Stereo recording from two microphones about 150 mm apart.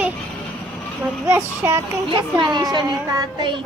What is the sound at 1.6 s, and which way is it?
A child's voice, 20° right (ahead or behind).